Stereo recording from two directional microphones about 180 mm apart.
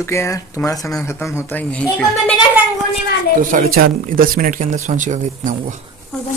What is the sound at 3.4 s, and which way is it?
Speech, 45° right (ahead or behind).